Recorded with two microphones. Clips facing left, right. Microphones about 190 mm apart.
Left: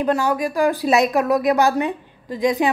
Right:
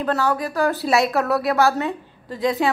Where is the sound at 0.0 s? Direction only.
15° left (ahead or behind).